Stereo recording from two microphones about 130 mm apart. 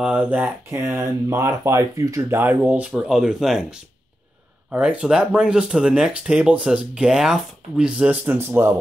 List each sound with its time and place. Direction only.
0.0 s speech: 10° right (ahead or behind)